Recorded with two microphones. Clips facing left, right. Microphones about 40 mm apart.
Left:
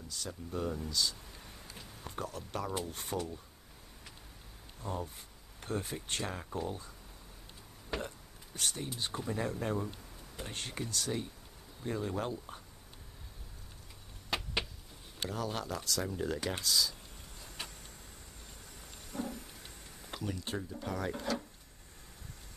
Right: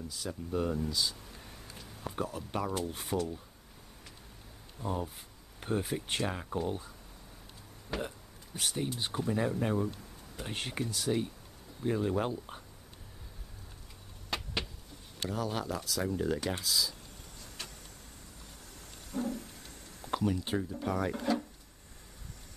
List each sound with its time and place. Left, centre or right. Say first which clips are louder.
0.1 s speech: right 3 dB; centre
4.7 s speech: right 4 dB; centre
7.9 s speech: right 2 dB; centre
8.5 s speech: right 3 dB; centre
14.3 s a sound: left 1 dB; centre
15.2 s speech: right 3 dB; centre
17.6 s vehicle: left 1 dB; centre
19.1 s a sound: right 5 dB; centre
20.1 s speech: right 8 dB; centre